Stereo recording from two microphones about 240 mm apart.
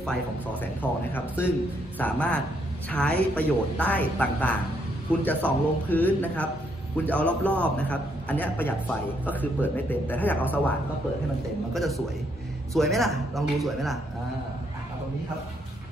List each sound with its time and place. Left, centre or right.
0.0 s a woman's voice: centre
12.7 s a woman's voice: centre